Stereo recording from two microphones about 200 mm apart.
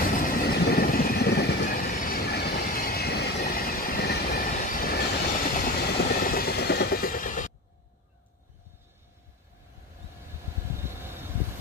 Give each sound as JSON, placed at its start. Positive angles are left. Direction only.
{"t": 0.0, "sound": "vehicle", "side_deg": 45}
{"t": 10.8, "sound": "vehicle", "side_deg": -10}